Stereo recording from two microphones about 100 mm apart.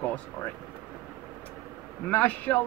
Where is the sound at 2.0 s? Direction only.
15° left (ahead or behind).